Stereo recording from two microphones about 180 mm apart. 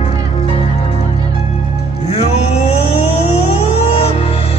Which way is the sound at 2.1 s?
35° left (ahead or behind).